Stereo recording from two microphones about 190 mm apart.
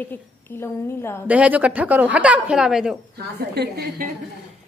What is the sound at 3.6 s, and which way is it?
Speech, 55° right (ahead or behind).